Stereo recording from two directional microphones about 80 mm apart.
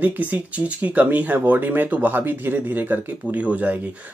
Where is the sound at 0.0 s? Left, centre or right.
Right.